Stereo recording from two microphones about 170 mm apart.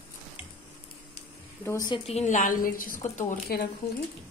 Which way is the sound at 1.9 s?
40° left (ahead or behind).